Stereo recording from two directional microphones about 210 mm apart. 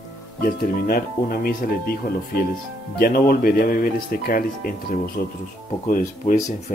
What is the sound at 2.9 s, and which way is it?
Speech, 45° left (ahead or behind).